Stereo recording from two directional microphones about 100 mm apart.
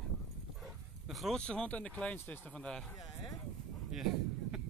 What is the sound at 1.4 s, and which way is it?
Speech, 10° left (ahead or behind).